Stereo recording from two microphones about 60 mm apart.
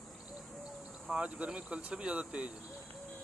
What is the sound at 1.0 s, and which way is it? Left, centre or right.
Speech, centre.